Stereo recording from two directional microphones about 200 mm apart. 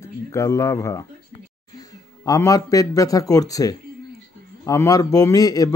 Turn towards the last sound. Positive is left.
turn(degrees=20)  # may be behind; listen again after turning